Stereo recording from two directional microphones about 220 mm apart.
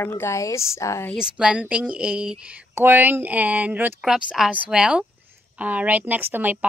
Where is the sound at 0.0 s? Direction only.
10° left (ahead or behind).